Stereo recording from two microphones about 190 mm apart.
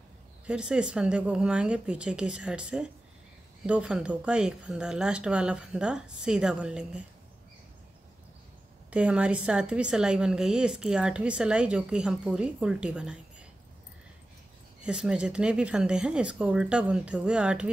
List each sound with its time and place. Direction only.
0.5 s a woman's voice: 5° right (ahead or behind)
8.9 s a woman's voice: 5° right (ahead or behind)
14.8 s a woman's voice: 5° right (ahead or behind)